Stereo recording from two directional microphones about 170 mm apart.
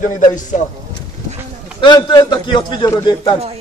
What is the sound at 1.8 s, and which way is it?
A man's voice, 25° left (ahead or behind).